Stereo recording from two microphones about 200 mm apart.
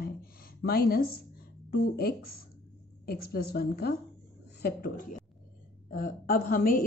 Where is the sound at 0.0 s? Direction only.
50° left (ahead or behind).